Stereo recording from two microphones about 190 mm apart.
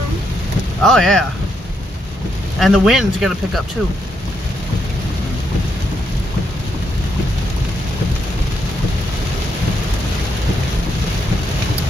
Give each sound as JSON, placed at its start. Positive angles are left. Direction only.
{"t": 0.8, "sound": "speech", "side_deg": 5}
{"t": 2.6, "sound": "speech", "side_deg": 0}